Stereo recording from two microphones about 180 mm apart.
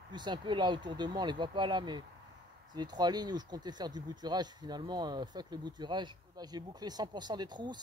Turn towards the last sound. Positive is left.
turn(degrees=-25)  # may be behind; listen again after turning